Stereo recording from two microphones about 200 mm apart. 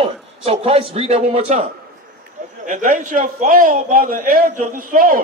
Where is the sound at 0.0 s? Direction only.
30° right (ahead or behind).